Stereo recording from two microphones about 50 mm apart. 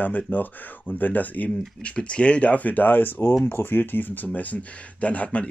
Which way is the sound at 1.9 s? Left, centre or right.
Left.